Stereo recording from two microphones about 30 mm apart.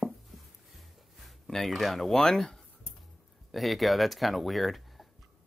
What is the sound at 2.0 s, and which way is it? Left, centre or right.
Speech, centre.